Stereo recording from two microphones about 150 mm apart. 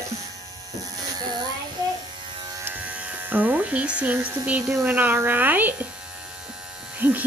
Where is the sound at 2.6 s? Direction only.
10° right (ahead or behind).